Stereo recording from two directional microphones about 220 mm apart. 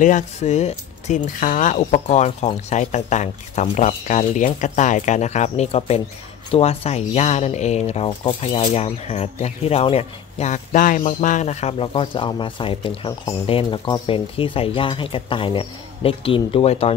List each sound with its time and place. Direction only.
0.0 s speech: 35° left (ahead or behind)